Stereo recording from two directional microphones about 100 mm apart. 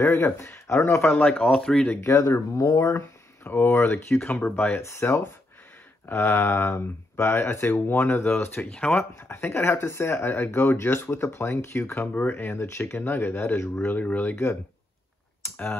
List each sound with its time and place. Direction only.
0.0 s speech: 25° left (ahead or behind)
1.1 s speech: 10° left (ahead or behind)
1.9 s speech: 25° left (ahead or behind)
8.6 s speech: 5° left (ahead or behind)
9.3 s speech: 25° left (ahead or behind)
15.4 s a sound: 25° left (ahead or behind)